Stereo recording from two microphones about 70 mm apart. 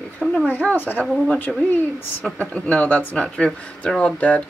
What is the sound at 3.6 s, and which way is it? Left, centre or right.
Speech, centre.